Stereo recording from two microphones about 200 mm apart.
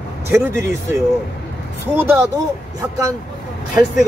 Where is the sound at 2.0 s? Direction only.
10° right (ahead or behind).